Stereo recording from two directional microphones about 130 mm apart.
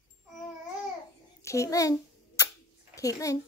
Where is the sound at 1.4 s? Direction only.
25° left (ahead or behind).